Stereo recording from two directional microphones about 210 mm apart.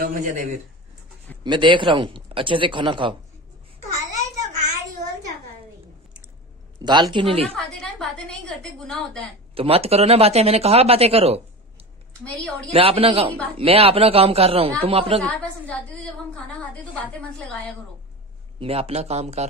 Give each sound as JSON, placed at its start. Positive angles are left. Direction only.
{"t": 0.0, "sound": "a man's voice", "side_deg": -40}
{"t": 1.4, "sound": "speech", "side_deg": -20}
{"t": 6.8, "sound": "speech", "side_deg": -20}
{"t": 7.5, "sound": "a sound", "side_deg": 0}
{"t": 9.6, "sound": "speech", "side_deg": -30}
{"t": 12.4, "sound": "a woman's voice", "side_deg": 5}
{"t": 12.7, "sound": "speech", "side_deg": -25}
{"t": 15.2, "sound": "a woman's voice", "side_deg": 5}
{"t": 17.0, "sound": "a woman's voice", "side_deg": 5}
{"t": 18.6, "sound": "speech", "side_deg": -30}